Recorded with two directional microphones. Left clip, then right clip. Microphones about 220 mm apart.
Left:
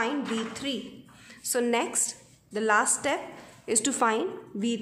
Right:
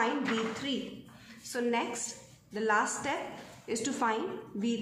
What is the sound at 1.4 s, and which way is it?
A woman's voice, 50° left (ahead or behind).